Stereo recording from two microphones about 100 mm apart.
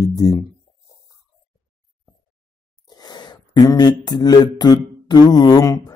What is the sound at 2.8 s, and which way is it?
Speech, 45° left (ahead or behind).